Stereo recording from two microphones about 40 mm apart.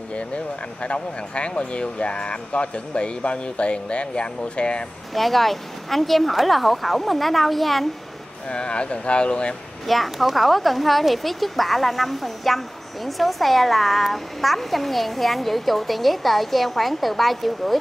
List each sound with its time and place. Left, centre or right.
0.1 s speech: left
5.1 s speech: centre
8.5 s speech: left
9.8 s speech: centre